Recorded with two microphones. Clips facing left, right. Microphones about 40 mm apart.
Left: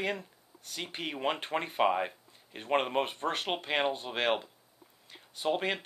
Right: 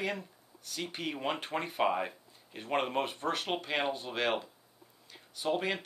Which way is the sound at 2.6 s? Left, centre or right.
Left.